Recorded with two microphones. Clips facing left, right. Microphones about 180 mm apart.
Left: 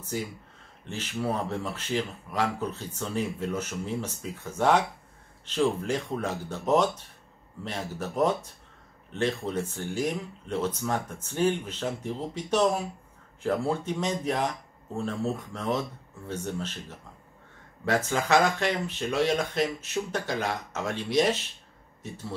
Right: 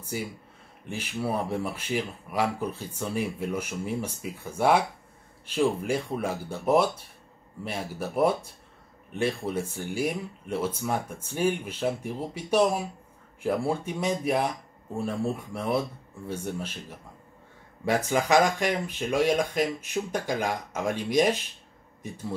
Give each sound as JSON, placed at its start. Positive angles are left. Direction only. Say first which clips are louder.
{"t": 0.1, "sound": "speech", "louder": "even", "side_deg": -10}